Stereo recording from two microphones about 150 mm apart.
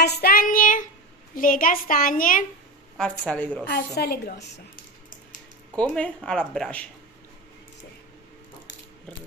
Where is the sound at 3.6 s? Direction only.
90° left; by 5.2 s 75° left (ahead or behind).